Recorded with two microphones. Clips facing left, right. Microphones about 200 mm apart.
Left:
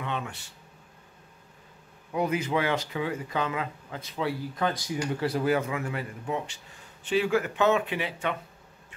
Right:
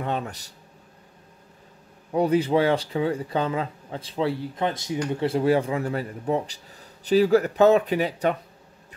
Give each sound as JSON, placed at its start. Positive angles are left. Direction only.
{"t": 0.0, "sound": "a man's voice", "side_deg": -40}
{"t": 2.1, "sound": "a man's voice", "side_deg": -35}